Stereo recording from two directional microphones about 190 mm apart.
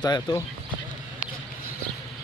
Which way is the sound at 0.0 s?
20° left (ahead or behind).